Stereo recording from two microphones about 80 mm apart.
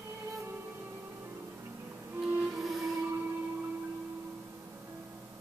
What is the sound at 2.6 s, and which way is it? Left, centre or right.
Train, centre.